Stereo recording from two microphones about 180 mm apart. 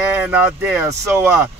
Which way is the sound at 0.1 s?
10° right (ahead or behind).